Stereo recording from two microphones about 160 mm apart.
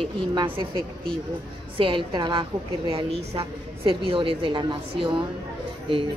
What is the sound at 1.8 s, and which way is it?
A woman's voice, 30° right (ahead or behind).